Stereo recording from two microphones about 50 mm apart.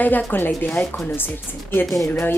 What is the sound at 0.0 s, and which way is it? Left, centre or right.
Speech, left.